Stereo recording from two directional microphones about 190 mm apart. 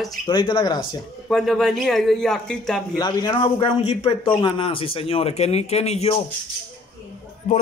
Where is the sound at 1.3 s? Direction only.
Centre (ahead or behind).